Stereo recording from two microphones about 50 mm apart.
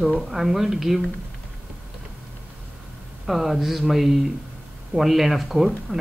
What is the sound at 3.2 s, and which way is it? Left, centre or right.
Speech, centre.